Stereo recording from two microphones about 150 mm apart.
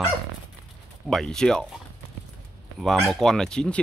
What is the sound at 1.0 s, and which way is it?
Speech, centre (ahead or behind).